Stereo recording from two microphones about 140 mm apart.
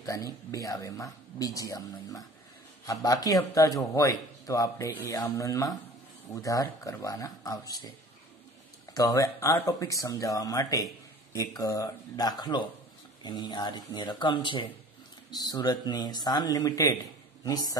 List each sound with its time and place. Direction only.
0.0 s a man's voice: 25° left (ahead or behind)
8.9 s a man's voice: 25° left (ahead or behind)